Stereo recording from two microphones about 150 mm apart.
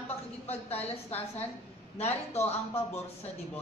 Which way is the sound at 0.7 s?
45° left (ahead or behind).